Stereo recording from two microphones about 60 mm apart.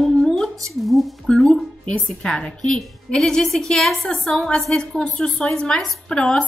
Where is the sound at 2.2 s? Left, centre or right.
Centre.